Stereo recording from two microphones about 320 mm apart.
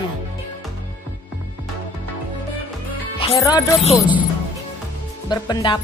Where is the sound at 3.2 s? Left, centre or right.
Centre.